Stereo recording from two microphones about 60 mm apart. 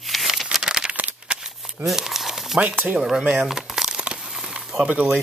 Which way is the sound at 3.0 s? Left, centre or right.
Centre.